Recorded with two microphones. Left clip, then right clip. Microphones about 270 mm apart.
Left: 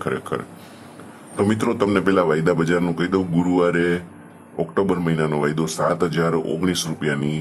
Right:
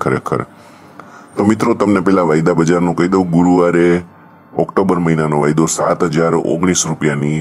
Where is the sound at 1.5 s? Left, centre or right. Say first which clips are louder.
Right 7 dB; right.